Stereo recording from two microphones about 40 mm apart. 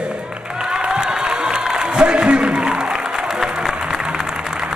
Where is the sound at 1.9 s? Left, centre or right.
Right.